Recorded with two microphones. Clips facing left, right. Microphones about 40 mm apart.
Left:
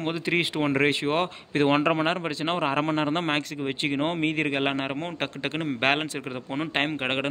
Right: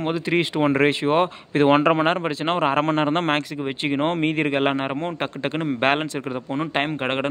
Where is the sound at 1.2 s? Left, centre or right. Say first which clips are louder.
Right 5 dB; right.